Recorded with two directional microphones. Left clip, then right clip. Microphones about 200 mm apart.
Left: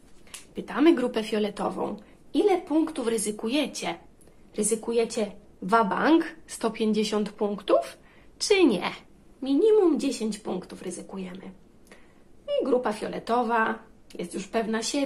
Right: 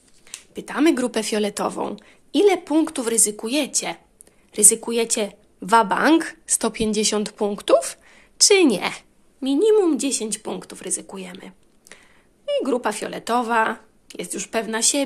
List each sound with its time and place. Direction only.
0.6 s a woman's voice: 50° right (ahead or behind)